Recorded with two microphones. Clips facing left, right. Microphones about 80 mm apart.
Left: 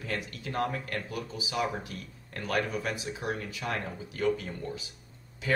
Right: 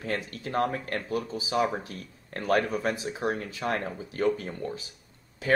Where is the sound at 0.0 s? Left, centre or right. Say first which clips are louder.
Right 3 dB; right.